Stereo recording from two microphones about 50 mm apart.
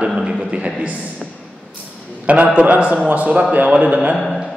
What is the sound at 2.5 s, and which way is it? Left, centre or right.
A man's voice, right.